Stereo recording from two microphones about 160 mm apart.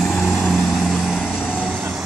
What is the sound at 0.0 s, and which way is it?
Vehicle, centre (ahead or behind).